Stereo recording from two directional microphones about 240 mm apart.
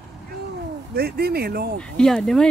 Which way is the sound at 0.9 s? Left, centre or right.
Right.